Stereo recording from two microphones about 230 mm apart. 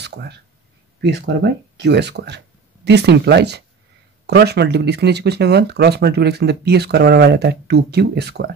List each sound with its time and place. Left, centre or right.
0.0 s speech: right